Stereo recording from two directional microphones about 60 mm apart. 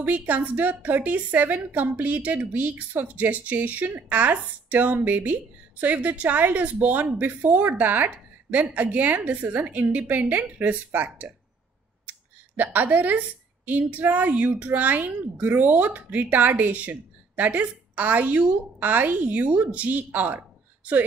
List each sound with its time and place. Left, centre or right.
0.0 s a woman's voice: right
12.1 s a sound: right
13.7 s a woman's voice: right